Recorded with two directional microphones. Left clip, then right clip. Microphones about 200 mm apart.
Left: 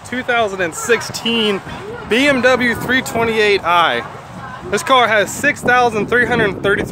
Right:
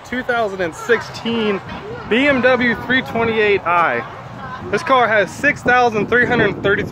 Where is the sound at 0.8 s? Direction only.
55° left (ahead or behind); by 5.2 s 40° left (ahead or behind).